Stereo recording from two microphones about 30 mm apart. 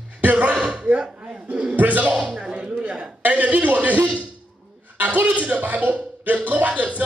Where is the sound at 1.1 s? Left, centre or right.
Right.